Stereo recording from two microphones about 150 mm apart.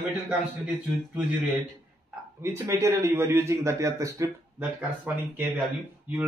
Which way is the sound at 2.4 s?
20° right (ahead or behind).